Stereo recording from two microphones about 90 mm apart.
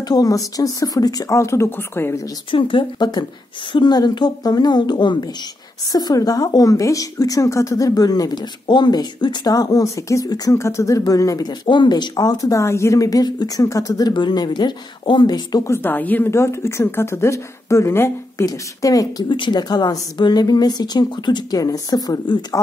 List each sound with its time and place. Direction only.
0.1 s speech: 40° left (ahead or behind); by 2.1 s 25° left (ahead or behind)
2.5 s speech: 65° left (ahead or behind); by 10.5 s 45° left (ahead or behind)
10.5 s speech: 30° left (ahead or behind)
11.4 s speech: 60° left (ahead or behind)
15.6 s speech: 25° left (ahead or behind)
16.3 s speech: 30° left (ahead or behind)
18.4 s speech: 40° left (ahead or behind)
19.2 s speech: 60° left (ahead or behind); by 22.6 s 45° left (ahead or behind)